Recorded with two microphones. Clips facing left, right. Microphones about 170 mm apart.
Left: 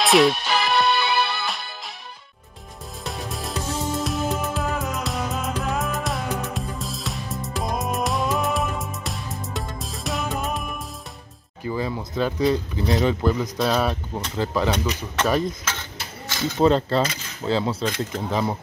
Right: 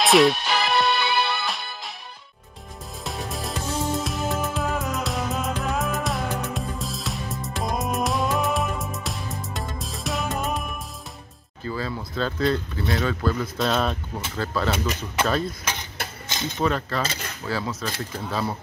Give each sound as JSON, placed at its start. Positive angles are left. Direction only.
{"t": 0.0, "sound": "music", "side_deg": 0}
{"t": 3.0, "sound": "music", "side_deg": 0}
{"t": 11.6, "sound": "speech", "side_deg": 15}
{"t": 13.6, "sound": "speech", "side_deg": 5}
{"t": 14.3, "sound": "speech", "side_deg": 15}
{"t": 15.6, "sound": "a sound", "side_deg": -15}
{"t": 16.5, "sound": "speech", "side_deg": 25}